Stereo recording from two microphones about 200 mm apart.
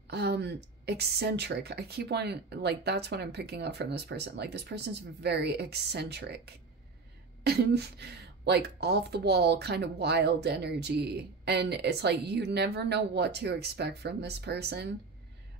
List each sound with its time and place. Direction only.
0.1 s speech: 55° right (ahead or behind)